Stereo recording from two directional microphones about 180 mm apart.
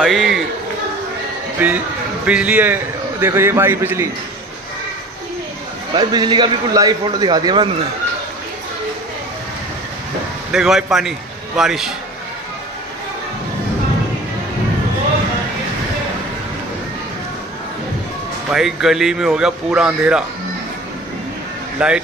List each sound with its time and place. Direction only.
0.0 s a sound: centre (ahead or behind)
1.6 s a man's voice: 10° right (ahead or behind)
5.9 s a man's voice: 25° right (ahead or behind)
10.5 s a man's voice: 5° right (ahead or behind)
18.5 s speech: 5° right (ahead or behind)
21.7 s speech: 5° right (ahead or behind)